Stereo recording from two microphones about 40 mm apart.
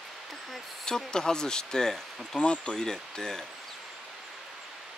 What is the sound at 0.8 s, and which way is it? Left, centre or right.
Speech, centre.